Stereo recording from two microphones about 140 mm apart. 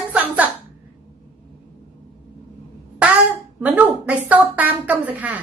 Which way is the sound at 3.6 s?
10° right (ahead or behind).